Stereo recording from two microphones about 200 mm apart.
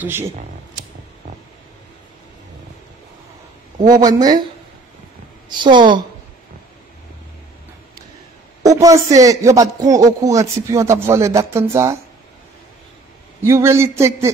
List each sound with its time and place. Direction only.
0.0 s a man's voice: 10° right (ahead or behind)
3.8 s a woman's voice: 20° right (ahead or behind)
5.5 s a woman's voice: 25° right (ahead or behind)
8.6 s a man's voice: 15° right (ahead or behind)
13.4 s a man's voice: 15° right (ahead or behind)